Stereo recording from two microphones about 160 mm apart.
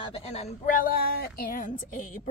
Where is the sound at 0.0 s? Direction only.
35° left (ahead or behind).